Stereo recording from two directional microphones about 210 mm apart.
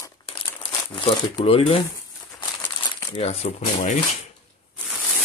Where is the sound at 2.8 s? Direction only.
25° left (ahead or behind).